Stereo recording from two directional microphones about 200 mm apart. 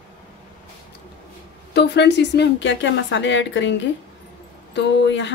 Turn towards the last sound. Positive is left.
turn(degrees=65)  # may be behind; listen again after turning